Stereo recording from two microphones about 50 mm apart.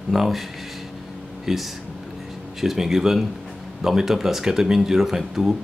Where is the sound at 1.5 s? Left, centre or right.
Centre.